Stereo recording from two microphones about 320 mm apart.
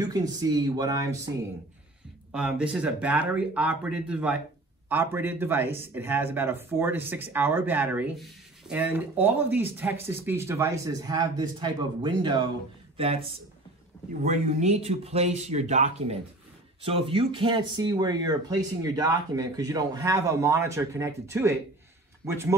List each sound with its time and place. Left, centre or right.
0.0 s speech: centre
2.3 s speech: centre